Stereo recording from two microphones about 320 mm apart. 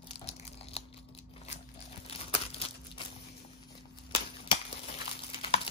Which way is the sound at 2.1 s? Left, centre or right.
Centre.